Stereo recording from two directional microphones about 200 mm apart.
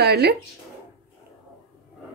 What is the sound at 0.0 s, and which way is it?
Speech, 55° right (ahead or behind).